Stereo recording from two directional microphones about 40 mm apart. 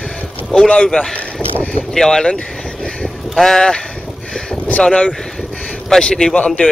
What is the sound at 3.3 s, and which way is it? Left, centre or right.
Speech, centre.